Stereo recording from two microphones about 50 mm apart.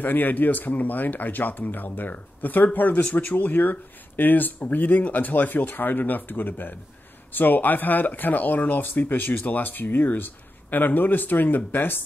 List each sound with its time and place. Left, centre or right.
0.0 s speech: left